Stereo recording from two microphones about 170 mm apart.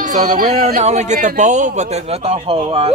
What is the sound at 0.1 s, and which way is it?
A man's voice, 45° right (ahead or behind).